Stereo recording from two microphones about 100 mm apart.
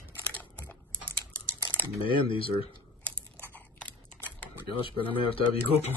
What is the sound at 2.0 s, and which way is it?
Speech, 60° left (ahead or behind).